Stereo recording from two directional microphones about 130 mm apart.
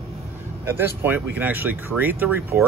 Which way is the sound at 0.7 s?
15° right (ahead or behind).